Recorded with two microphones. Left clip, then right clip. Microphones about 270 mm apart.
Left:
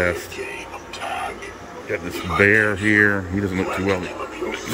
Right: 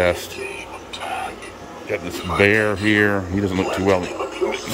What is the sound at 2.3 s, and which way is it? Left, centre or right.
A man's voice, centre.